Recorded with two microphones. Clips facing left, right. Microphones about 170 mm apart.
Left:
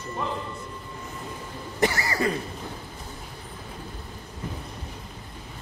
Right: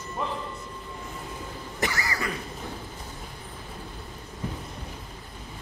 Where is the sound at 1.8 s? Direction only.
30° left (ahead or behind).